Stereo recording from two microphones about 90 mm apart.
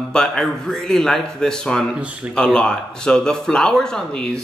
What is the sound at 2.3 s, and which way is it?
Speech, 10° left (ahead or behind).